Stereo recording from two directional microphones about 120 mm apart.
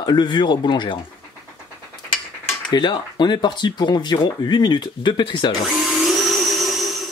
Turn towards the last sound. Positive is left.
turn(degrees=0)  # may be behind; listen again after turning